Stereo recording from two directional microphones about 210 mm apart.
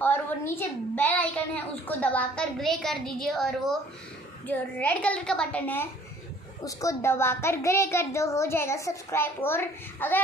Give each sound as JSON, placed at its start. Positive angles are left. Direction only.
{"t": 0.0, "sound": "a woman's voice", "side_deg": 10}